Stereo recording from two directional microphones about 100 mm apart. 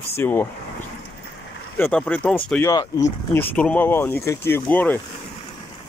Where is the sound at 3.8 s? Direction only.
20° left (ahead or behind).